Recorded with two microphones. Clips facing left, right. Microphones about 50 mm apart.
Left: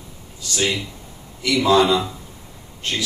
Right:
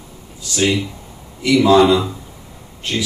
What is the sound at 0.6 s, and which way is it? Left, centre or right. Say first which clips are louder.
Speech: right 5 dB; centre.